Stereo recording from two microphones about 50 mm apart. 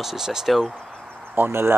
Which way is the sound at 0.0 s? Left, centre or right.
Centre.